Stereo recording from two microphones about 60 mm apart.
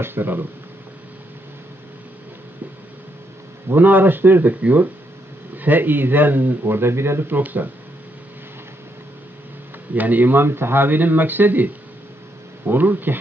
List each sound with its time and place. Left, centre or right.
0.0 s speech: right
3.7 s speech: right
9.9 s speech: right